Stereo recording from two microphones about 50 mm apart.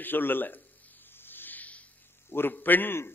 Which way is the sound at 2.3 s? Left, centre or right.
Left.